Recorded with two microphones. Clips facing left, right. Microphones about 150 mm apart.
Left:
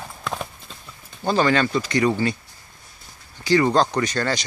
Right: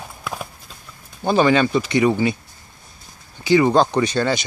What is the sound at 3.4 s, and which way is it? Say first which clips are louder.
Speech: right 3 dB; 15° right (ahead or behind).